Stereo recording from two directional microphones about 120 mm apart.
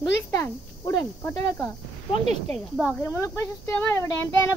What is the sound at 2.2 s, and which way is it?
Speech, 65° right (ahead or behind).